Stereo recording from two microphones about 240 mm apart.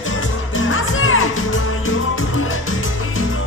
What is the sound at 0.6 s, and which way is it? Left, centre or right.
Music, left.